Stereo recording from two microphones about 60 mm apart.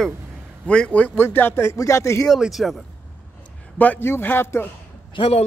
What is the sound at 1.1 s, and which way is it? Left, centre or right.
Speech, left.